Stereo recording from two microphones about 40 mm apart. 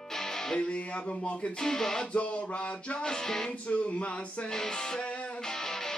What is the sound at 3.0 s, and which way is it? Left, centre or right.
Music, centre.